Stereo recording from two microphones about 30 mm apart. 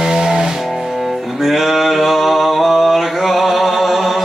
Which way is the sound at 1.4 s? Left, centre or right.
Centre.